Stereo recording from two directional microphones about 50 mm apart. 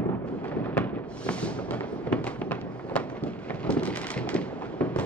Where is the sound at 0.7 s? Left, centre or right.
Left.